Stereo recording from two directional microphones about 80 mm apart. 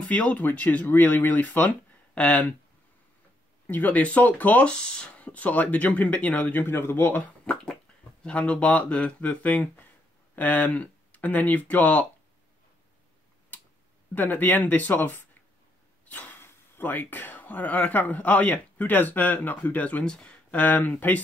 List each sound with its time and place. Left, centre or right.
0.1 s speech: centre
3.6 s speech: left
8.2 s speech: centre
14.1 s speech: left